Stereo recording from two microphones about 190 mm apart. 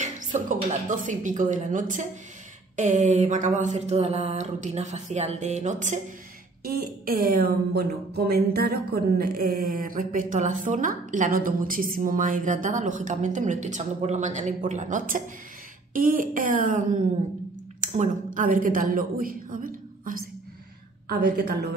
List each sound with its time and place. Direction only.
0.0 s mantra: 40° right (ahead or behind)
6.6 s a woman's voice: 55° right (ahead or behind)